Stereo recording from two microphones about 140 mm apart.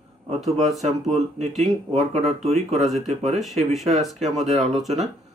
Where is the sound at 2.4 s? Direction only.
50° right (ahead or behind).